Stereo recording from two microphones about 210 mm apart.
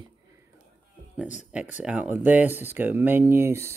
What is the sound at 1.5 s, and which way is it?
Speech, 5° right (ahead or behind).